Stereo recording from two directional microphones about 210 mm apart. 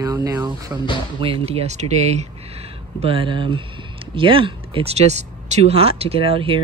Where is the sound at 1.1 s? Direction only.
25° right (ahead or behind).